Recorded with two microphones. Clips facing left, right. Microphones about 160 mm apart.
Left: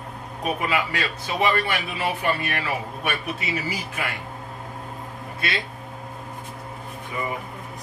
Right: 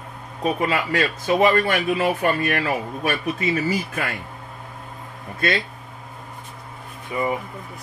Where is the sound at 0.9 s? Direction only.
45° right (ahead or behind).